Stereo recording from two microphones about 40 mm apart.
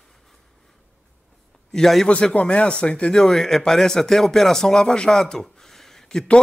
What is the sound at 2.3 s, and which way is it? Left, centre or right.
Speech, left.